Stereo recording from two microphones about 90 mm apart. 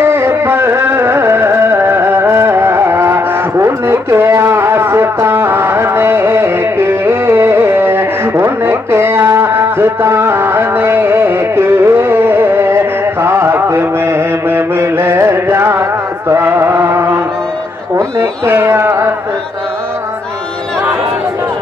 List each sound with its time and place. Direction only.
0.0 s music: 30° right (ahead or behind)
18.4 s carnatic music: 25° right (ahead or behind)